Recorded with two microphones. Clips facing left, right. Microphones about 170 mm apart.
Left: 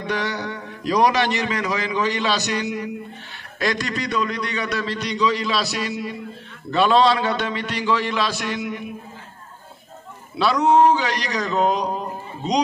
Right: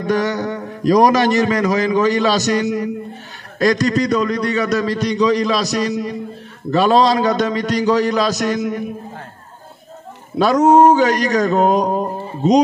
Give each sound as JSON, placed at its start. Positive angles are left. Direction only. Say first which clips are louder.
{"t": 0.0, "sound": "a man's voice", "louder": "right 7 dB", "side_deg": -45}
{"t": 10.3, "sound": "a man's voice", "louder": "right 6 dB", "side_deg": -45}